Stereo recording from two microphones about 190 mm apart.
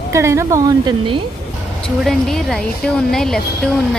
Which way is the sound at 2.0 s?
5° left (ahead or behind).